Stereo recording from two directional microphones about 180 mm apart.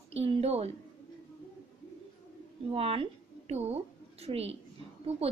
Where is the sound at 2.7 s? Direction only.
30° right (ahead or behind).